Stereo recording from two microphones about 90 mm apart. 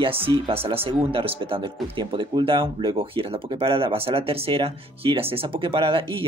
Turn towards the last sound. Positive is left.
turn(degrees=-80)